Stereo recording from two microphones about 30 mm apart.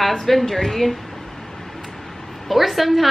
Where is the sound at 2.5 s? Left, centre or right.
Centre.